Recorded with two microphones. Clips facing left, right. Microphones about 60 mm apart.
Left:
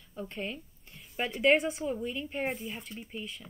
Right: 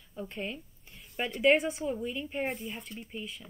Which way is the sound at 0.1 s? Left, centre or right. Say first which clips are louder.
Even; centre.